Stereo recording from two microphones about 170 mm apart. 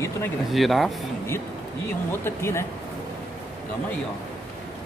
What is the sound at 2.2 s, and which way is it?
Speech, 15° left (ahead or behind).